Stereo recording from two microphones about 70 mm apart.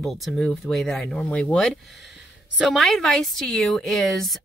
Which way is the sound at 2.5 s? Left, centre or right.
Centre.